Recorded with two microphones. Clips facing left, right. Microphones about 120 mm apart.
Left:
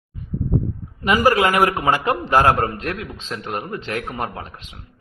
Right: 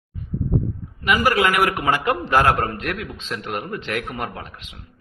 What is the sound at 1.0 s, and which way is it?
A man's voice, 40° left (ahead or behind).